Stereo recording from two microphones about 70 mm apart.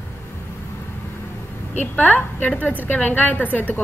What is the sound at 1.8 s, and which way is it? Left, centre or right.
A woman's voice, left.